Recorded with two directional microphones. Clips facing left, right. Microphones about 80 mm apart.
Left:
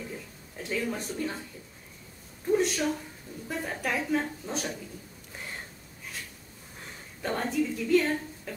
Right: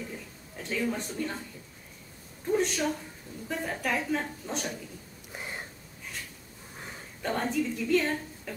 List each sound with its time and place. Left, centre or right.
0.6 s a woman's voice: centre
2.5 s a woman's voice: centre
5.3 s a sound: centre
7.2 s a woman's voice: centre